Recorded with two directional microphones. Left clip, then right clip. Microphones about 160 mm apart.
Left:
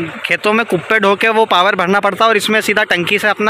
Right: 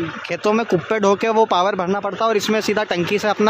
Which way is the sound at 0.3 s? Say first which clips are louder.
Left 5 dB; 5° right (ahead or behind).